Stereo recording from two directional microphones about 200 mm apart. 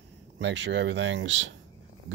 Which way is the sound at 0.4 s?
60° right (ahead or behind).